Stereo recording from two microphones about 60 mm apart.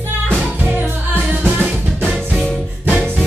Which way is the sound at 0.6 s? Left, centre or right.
Right.